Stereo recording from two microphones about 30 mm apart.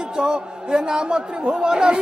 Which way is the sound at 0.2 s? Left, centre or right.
Right.